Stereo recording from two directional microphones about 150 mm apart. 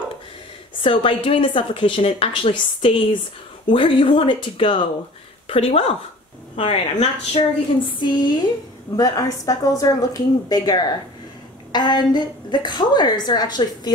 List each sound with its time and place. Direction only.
0.8 s a woman's voice: 35° left (ahead or behind)
7.8 s a woman's voice: 30° left (ahead or behind)